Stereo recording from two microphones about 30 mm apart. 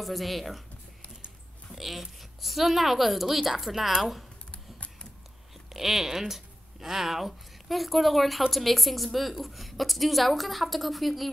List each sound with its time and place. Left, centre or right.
0.0 s speech: centre
1.8 s a woman's voice: centre
4.5 s typing: left
5.7 s speech: centre